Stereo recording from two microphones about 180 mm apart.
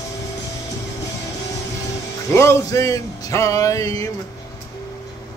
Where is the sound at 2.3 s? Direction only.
15° left (ahead or behind).